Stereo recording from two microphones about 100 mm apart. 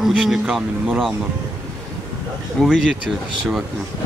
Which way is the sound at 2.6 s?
5° right (ahead or behind).